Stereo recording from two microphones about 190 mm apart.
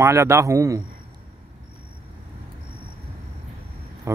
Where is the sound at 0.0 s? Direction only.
15° right (ahead or behind).